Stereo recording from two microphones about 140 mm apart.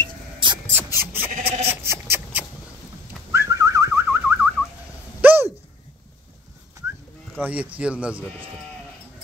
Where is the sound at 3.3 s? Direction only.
20° right (ahead or behind).